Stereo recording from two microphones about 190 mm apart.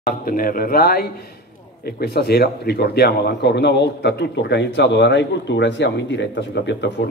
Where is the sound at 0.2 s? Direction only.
50° left (ahead or behind).